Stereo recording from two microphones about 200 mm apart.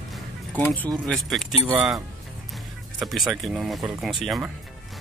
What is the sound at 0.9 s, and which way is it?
Speech, centre (ahead or behind).